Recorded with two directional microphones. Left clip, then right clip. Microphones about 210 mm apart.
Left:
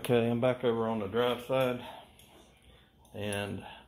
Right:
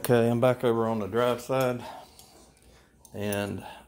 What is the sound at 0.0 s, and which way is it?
Speech, 35° right (ahead or behind).